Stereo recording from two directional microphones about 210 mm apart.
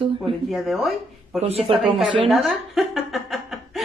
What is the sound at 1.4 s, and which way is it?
Speech, 30° right (ahead or behind).